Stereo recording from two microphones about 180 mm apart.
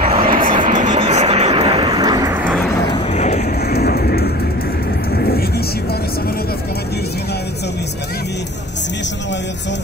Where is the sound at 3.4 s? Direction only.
60° left (ahead or behind).